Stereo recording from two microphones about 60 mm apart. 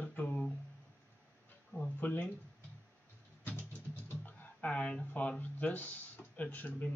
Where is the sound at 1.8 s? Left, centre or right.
Left.